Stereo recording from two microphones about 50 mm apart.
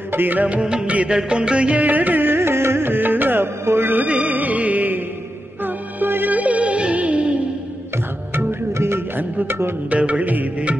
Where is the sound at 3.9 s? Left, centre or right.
Right.